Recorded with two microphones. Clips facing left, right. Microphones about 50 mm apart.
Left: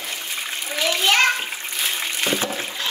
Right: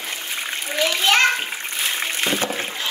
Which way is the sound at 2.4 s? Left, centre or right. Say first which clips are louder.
Right 2 dB; right.